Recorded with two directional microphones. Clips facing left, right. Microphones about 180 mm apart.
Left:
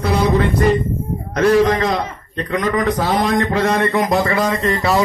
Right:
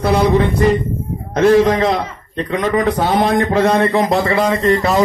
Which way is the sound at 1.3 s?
25° right (ahead or behind).